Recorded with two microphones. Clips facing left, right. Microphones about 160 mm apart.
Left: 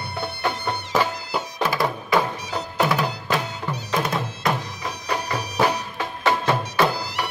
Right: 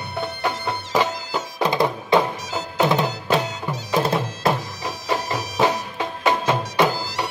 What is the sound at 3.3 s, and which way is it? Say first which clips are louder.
Music: right 3 dB; 25° right (ahead or behind).